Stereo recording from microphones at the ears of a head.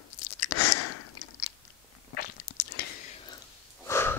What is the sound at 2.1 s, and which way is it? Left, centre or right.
Biting, left.